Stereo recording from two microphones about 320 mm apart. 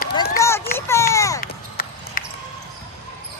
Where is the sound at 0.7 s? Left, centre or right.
Centre.